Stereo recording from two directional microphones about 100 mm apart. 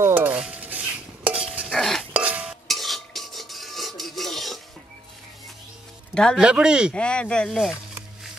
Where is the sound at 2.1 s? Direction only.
15° right (ahead or behind).